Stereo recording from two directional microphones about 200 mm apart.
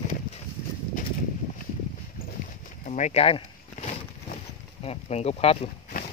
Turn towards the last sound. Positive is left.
turn(degrees=30)  # may be behind; listen again after turning